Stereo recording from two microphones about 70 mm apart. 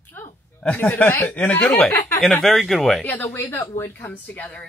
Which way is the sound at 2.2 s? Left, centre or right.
Centre.